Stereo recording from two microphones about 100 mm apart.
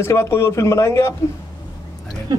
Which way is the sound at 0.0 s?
25° left (ahead or behind).